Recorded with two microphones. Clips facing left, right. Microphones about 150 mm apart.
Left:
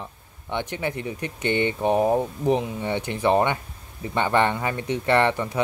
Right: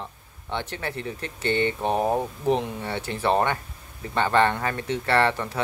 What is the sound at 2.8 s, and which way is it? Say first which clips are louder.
Speech: left 3 dB; 15° left (ahead or behind).